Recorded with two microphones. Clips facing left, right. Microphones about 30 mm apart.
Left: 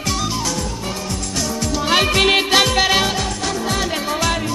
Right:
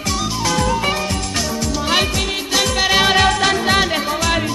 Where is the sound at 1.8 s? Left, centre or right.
Centre.